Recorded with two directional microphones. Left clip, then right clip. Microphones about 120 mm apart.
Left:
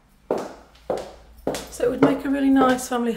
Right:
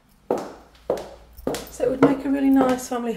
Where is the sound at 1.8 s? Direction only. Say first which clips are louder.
Right 1 dB; 25° left (ahead or behind).